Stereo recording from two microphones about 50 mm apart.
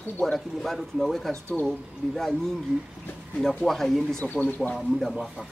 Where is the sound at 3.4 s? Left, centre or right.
Centre.